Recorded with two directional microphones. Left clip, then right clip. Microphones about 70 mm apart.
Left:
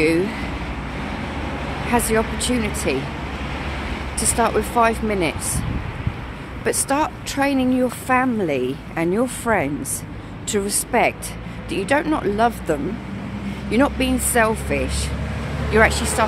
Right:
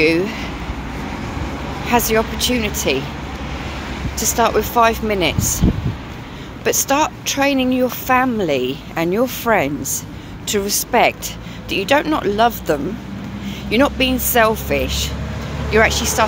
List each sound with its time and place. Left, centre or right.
0.0 s speech: left
1.9 s speech: centre
4.2 s speech: left
6.6 s speech: left
8.1 s speech: centre
10.5 s speech: centre
12.2 s speech: centre
13.7 s speech: left
15.7 s speech: left